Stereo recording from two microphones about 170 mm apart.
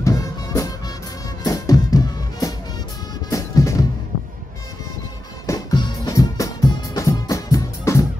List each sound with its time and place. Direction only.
0.0 s music: 20° left (ahead or behind)
5.5 s music: 25° left (ahead or behind)